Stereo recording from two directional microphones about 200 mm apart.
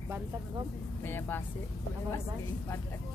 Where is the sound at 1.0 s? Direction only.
10° left (ahead or behind).